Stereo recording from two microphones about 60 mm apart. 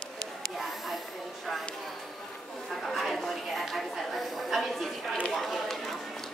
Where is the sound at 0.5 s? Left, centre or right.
Centre.